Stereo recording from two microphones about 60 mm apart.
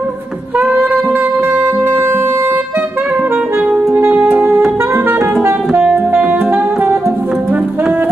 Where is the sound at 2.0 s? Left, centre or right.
Right.